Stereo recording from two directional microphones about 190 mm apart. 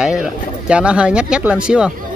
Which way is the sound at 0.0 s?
5° right (ahead or behind).